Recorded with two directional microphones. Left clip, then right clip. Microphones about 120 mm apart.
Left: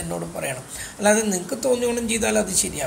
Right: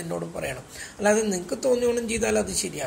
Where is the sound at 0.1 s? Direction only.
45° right (ahead or behind).